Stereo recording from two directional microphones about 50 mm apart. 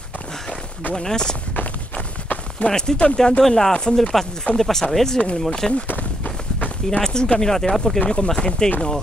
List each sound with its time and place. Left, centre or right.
0.9 s speech: centre
2.6 s speech: centre
4.6 s speech: centre
6.9 s speech: centre